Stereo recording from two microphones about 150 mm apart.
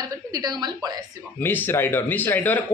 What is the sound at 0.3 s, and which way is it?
Speech, 25° right (ahead or behind).